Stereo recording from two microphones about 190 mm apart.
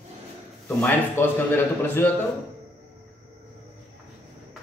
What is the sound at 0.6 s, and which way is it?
Speech, 10° left (ahead or behind).